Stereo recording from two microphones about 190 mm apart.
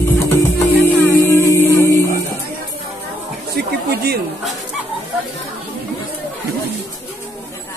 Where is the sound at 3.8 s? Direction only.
55° right (ahead or behind).